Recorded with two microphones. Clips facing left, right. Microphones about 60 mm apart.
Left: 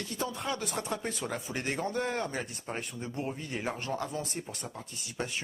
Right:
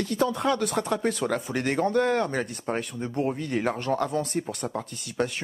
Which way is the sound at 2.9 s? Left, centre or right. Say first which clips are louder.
Right 8 dB; right.